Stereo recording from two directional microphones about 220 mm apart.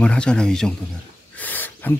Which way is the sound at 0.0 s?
5° left (ahead or behind).